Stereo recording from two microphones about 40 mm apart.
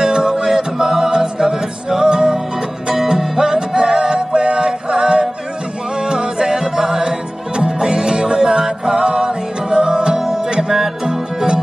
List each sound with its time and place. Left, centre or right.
0.0 s music: centre